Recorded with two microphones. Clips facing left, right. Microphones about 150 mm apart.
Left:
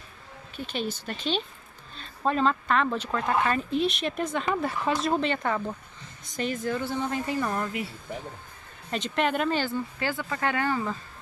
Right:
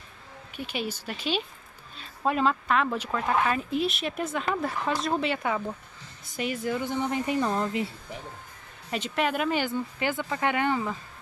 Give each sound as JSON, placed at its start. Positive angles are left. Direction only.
{"t": 0.7, "sound": "speech", "side_deg": -10}
{"t": 8.9, "sound": "speech", "side_deg": -5}